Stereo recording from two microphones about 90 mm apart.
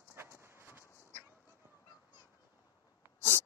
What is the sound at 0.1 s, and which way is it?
Horse, 25° right (ahead or behind).